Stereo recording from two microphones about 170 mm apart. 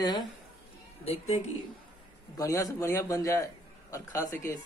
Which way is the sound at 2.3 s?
20° left (ahead or behind).